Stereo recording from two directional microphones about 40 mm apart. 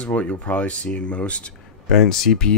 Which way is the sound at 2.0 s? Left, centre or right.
Centre.